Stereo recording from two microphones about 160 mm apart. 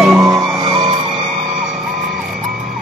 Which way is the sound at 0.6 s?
30° right (ahead or behind).